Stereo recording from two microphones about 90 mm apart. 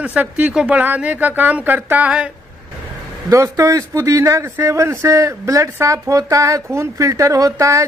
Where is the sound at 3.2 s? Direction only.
35° right (ahead or behind).